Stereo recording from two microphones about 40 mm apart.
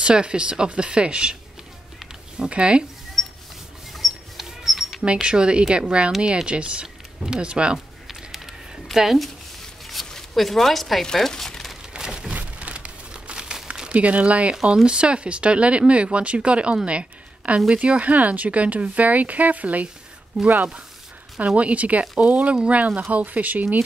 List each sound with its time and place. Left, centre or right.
0.0 s speech: right
2.3 s speech: right
3.2 s a sound: centre
5.0 s speech: right
8.1 s a sound: centre
8.9 s a woman's voice: centre
10.1 s speech: centre
11.1 s crumpling: centre
11.9 s a sound: centre
12.5 s crumpling: right
13.9 s speech: right